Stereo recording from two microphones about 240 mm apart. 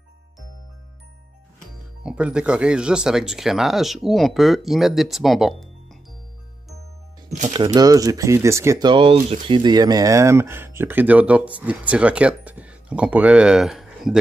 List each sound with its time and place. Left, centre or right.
2.0 s speech: centre
7.2 s music: right
7.5 s speech: centre